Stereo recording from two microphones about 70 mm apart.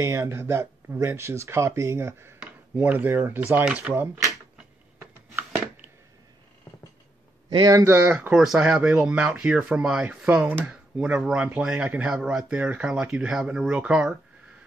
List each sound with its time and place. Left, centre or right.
0.0 s speech: right
2.7 s speech: right
7.4 s a man's voice: right
7.8 s speech: right
8.1 s speech: right
12.8 s speech: centre